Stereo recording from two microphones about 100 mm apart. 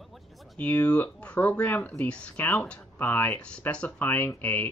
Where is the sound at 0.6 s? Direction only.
15° left (ahead or behind).